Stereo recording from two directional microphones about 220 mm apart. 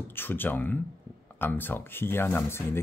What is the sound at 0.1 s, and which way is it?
Speech, 10° left (ahead or behind).